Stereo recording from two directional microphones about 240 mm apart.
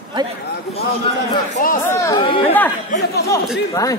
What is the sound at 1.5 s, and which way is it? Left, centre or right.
Speech, left.